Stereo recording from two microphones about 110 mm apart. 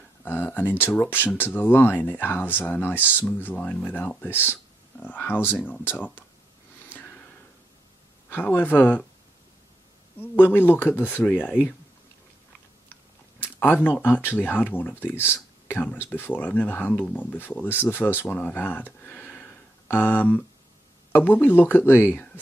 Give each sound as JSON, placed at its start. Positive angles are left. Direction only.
{"t": 0.2, "sound": "speech", "side_deg": 15}
{"t": 8.3, "sound": "speech", "side_deg": 15}
{"t": 10.2, "sound": "speech", "side_deg": 20}
{"t": 12.9, "sound": "chewing", "side_deg": 20}
{"t": 13.8, "sound": "speech", "side_deg": 15}